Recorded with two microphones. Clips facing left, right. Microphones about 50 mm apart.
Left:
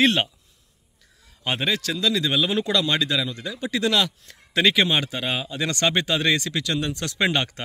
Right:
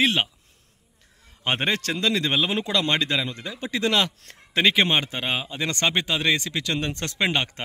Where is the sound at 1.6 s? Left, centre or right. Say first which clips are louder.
Left 2 dB; right.